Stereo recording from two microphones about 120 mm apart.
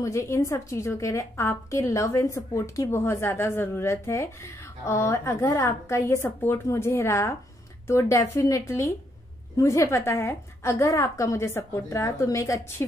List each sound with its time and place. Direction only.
0.0 s a woman's voice: 25° left (ahead or behind)